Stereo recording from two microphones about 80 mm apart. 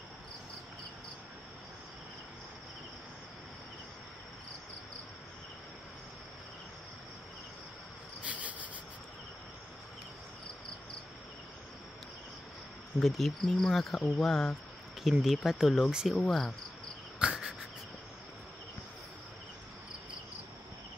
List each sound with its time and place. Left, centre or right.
8.2 s insect: centre
13.0 s speech: centre
16.2 s speech: centre
17.2 s insect: centre